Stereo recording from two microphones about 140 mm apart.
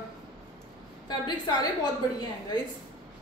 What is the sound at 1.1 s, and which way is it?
Speech, 30° left (ahead or behind).